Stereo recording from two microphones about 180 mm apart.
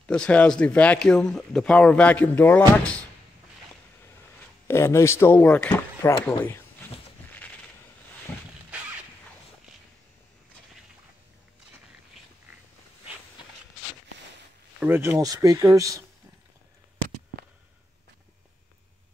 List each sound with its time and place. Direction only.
0.0 s speech: 5° left (ahead or behind)
4.6 s speech: 15° left (ahead or behind)
14.8 s speech: 10° right (ahead or behind)